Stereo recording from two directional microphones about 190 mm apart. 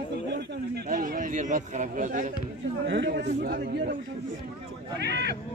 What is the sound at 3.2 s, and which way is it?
Speech, 50° right (ahead or behind).